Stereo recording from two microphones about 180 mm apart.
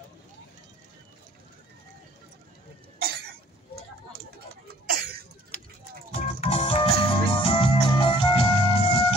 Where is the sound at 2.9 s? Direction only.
60° right (ahead or behind).